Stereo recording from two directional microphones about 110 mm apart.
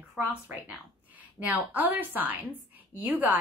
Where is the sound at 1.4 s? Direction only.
15° right (ahead or behind).